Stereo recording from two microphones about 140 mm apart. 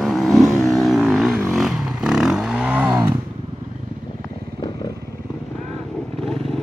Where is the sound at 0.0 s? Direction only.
Centre (ahead or behind).